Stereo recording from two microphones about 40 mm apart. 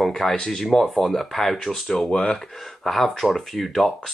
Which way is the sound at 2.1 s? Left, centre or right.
Left.